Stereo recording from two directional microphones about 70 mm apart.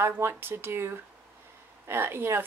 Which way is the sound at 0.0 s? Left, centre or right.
Right.